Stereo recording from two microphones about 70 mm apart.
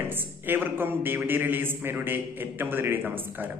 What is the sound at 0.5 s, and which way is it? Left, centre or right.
A man's voice, right.